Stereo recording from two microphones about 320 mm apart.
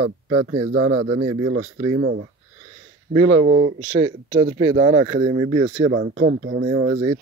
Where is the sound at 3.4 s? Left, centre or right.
Right.